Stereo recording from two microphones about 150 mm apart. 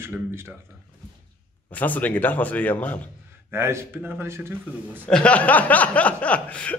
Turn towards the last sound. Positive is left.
turn(degrees=10)  # may be behind; listen again after turning